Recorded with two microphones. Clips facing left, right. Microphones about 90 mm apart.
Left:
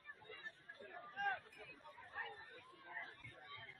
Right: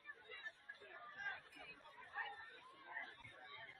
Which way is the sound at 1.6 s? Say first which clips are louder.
Left 2 dB; centre (ahead or behind).